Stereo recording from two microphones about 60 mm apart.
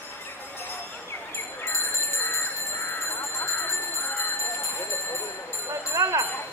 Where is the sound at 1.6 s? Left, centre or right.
Left.